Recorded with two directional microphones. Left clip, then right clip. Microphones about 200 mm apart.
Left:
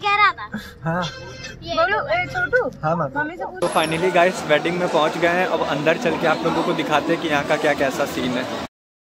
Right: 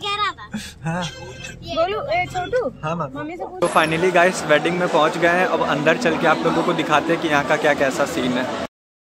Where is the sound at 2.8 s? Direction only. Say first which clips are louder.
Left 4 dB; 25° left (ahead or behind).